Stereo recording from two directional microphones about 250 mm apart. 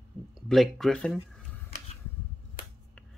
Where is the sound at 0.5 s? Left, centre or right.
Centre.